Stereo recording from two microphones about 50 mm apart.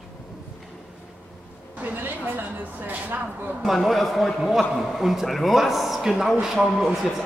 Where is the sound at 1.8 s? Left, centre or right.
Right.